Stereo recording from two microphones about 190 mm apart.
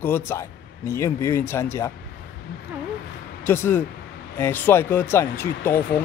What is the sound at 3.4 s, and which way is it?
Speech, 10° left (ahead or behind).